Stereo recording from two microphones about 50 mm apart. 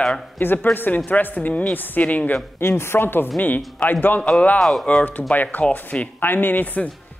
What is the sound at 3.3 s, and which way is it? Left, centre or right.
Speech, left.